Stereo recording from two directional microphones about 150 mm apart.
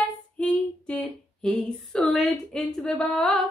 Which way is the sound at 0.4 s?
5° left (ahead or behind).